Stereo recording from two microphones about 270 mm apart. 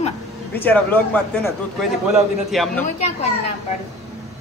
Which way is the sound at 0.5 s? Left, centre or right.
Centre.